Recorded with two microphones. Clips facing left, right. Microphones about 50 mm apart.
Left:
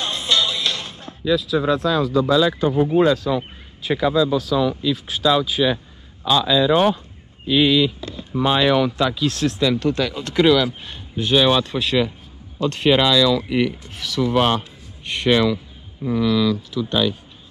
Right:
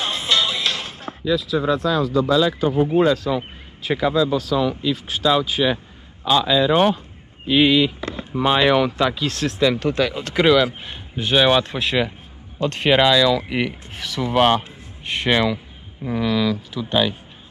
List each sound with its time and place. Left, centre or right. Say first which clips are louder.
0.0 s music: even; centre
3.0 s a man's voice: left 1 dB; centre
5.3 s speech: even; right; by 9.6 s centre
9.6 s a man's voice: right 3 dB; centre